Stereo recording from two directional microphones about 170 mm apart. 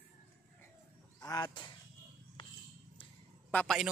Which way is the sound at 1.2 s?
20° left (ahead or behind).